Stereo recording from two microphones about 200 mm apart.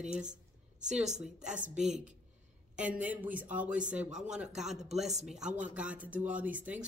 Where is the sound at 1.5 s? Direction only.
40° right (ahead or behind).